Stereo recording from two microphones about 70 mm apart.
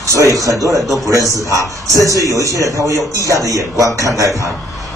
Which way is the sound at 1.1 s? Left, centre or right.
Right.